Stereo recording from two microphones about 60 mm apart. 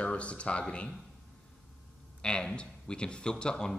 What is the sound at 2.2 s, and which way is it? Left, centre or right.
Speech, centre.